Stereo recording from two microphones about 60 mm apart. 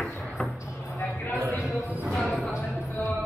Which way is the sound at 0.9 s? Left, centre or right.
Left.